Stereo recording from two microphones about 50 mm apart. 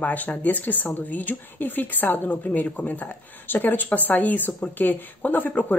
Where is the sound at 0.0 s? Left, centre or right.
Left.